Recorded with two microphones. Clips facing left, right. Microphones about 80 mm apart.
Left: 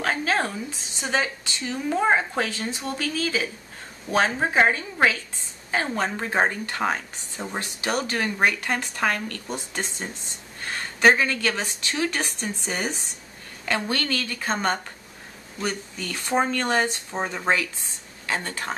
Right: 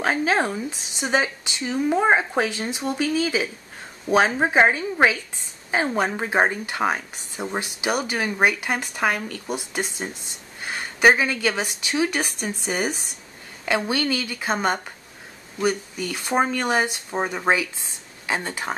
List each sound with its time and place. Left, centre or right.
0.0 s a woman's voice: centre